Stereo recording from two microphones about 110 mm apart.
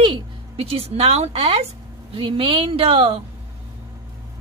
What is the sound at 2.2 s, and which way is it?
A woman's voice, 50° right (ahead or behind).